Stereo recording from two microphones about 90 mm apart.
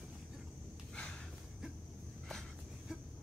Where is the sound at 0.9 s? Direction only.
10° left (ahead or behind).